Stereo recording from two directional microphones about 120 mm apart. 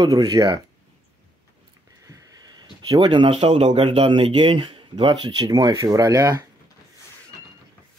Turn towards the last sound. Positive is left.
turn(degrees=-30)  # may be behind; listen again after turning